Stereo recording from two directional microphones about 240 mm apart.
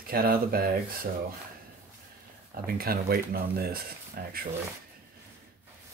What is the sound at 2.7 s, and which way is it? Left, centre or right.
Speech, right.